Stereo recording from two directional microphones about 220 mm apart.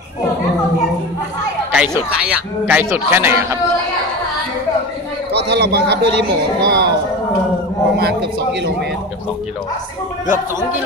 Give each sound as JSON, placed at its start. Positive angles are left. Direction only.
{"t": 1.7, "sound": "a man's voice", "side_deg": -5}
{"t": 5.3, "sound": "a man's voice", "side_deg": -50}